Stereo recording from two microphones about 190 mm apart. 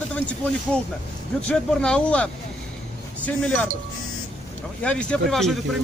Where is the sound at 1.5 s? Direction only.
5° left (ahead or behind).